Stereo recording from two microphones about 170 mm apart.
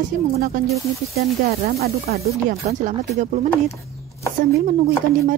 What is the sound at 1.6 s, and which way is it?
Speech, 65° right (ahead or behind).